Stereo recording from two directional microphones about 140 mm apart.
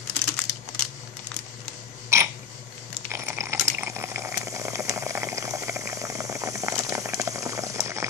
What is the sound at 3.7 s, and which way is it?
Water, 20° right (ahead or behind).